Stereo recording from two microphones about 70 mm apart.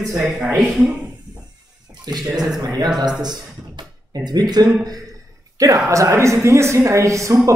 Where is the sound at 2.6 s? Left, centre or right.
Right.